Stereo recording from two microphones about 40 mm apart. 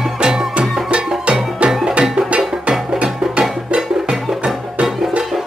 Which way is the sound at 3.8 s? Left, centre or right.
Centre.